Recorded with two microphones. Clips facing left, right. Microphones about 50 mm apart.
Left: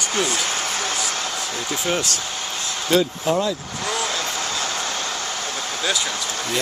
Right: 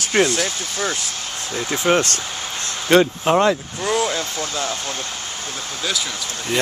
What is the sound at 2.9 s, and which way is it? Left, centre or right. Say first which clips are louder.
Speech: right 5 dB; right.